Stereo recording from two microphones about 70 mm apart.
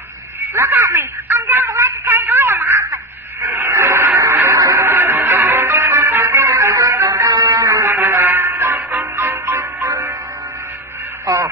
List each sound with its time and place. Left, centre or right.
0.4 s a sound: right
4.2 s music: right
4.6 s music: right
4.8 s music: right
7.2 s music: right
7.9 s music: right
11.3 s a sound: right